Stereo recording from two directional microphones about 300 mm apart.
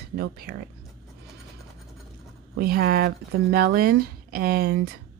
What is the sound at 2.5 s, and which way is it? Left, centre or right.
Speech, right.